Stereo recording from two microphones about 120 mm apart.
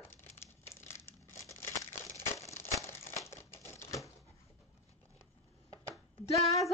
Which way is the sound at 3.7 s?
25° left (ahead or behind).